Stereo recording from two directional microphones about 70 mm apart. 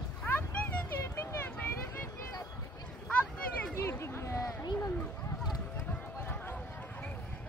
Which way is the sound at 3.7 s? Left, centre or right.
Left.